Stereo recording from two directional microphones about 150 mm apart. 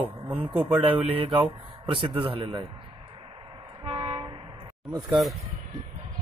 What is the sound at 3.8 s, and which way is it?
Train, 40° right (ahead or behind).